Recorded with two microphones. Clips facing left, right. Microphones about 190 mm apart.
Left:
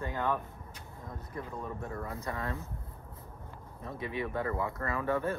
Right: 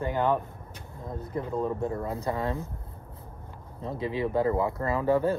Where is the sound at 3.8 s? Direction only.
30° right (ahead or behind).